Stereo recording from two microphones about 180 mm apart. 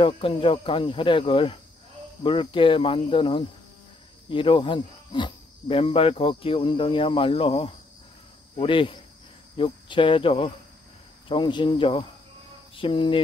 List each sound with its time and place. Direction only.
0.0 s speech: 30° left (ahead or behind)